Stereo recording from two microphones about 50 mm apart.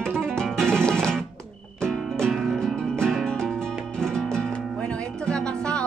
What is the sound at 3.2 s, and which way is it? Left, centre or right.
Music, centre.